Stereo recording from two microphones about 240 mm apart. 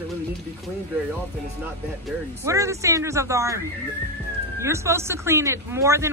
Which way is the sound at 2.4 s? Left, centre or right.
Centre.